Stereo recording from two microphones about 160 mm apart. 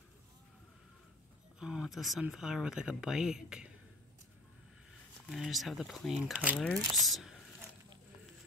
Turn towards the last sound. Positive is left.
turn(degrees=0)  # may be behind; listen again after turning